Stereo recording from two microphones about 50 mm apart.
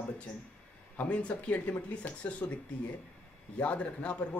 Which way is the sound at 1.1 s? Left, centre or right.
Left.